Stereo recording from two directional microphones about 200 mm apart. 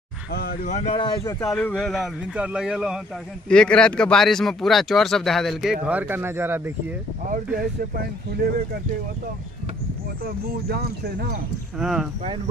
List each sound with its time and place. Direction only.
0.3 s speech: 50° left (ahead or behind)
0.9 s speech: 20° left (ahead or behind)
1.4 s speech: 5° left (ahead or behind); by 6.7 s 10° right (ahead or behind)
10.2 s speech: 50° right (ahead or behind)
11.8 s speech: centre (ahead or behind)